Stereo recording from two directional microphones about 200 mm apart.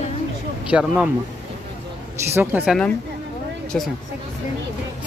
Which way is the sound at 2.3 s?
10° right (ahead or behind).